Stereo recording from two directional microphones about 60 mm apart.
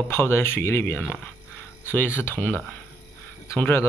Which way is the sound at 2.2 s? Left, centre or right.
Left.